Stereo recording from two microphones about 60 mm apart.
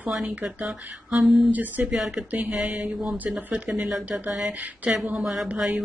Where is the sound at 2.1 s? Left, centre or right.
Right; by 4.0 s centre.